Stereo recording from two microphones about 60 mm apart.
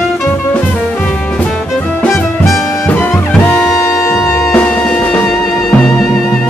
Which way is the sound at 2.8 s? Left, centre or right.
Left.